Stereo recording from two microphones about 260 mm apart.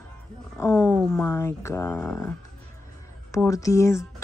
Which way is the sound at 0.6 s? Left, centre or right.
Centre.